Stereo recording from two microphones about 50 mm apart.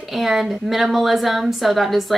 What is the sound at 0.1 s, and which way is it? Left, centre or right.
Speech, centre.